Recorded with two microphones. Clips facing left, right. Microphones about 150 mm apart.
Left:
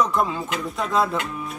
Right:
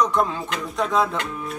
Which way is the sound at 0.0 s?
5° left (ahead or behind).